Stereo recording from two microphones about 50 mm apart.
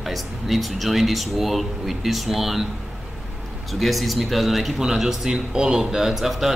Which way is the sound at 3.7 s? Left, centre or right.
Centre.